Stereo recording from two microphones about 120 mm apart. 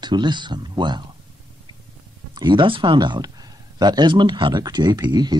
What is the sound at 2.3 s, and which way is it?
Speech, 40° right (ahead or behind).